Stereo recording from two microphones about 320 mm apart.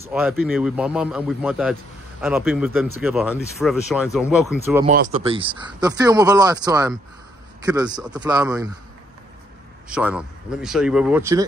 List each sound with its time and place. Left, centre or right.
0.0 s speech: centre
5.2 s speech: centre
9.8 s speech: centre